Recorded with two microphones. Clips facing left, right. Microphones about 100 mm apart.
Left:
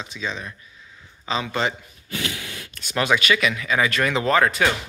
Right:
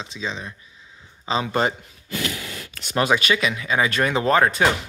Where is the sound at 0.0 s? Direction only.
25° right (ahead or behind).